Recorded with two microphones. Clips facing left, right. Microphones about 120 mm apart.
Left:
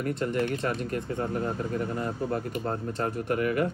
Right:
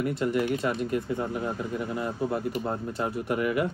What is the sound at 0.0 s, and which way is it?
Speech, 10° right (ahead or behind).